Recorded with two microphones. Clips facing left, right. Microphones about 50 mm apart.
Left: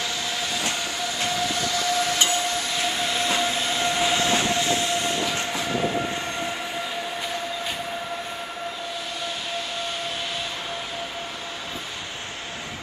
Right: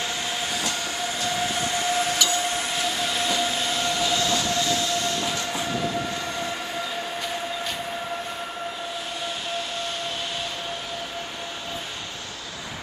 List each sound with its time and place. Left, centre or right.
0.0 s train: right
1.4 s vehicle: right
3.3 s train: left